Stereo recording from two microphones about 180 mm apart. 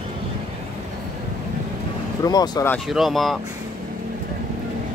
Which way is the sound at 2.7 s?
Centre (ahead or behind).